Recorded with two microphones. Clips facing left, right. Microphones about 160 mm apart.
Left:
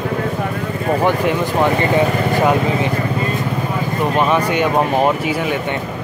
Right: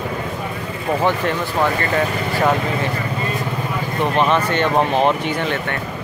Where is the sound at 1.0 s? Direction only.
15° left (ahead or behind).